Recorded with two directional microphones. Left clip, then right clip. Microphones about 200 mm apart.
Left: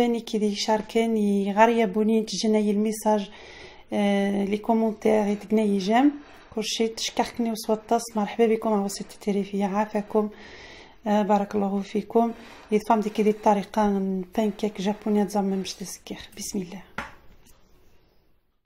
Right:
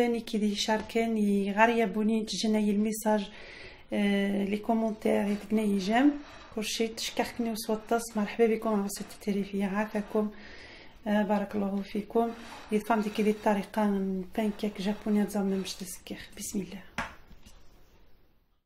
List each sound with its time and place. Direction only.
0.0 s speech: 30° left (ahead or behind)